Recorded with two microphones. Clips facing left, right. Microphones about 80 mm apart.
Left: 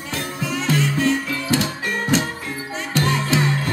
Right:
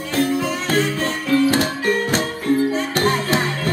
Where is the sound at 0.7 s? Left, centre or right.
Right.